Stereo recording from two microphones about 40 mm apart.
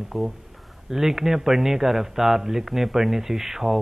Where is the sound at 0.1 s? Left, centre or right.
Centre.